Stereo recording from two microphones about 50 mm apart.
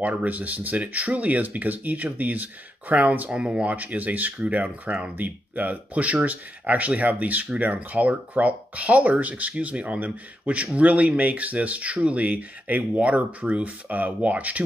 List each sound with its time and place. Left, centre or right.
0.0 s speech: right
3.7 s speech: right
5.1 s speech: right